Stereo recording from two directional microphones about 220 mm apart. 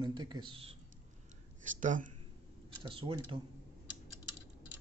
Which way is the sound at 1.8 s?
35° right (ahead or behind).